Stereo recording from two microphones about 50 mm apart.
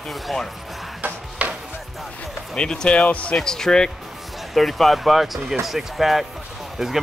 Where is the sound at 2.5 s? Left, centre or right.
Centre.